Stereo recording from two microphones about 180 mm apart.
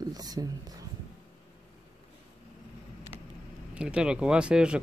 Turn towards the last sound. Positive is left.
turn(degrees=-5)  # may be behind; listen again after turning